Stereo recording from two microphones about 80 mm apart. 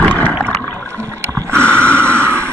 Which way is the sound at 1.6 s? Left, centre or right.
Centre.